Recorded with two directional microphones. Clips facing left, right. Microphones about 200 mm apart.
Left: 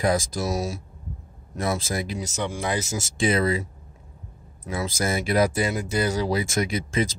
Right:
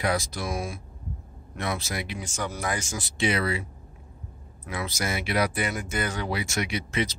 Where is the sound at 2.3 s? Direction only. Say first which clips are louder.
Left 3 dB; 30° left (ahead or behind).